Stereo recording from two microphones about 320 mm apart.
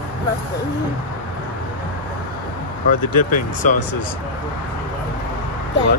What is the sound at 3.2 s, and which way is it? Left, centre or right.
Speech, left.